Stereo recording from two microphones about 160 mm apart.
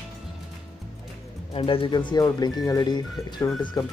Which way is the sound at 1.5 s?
35° left (ahead or behind).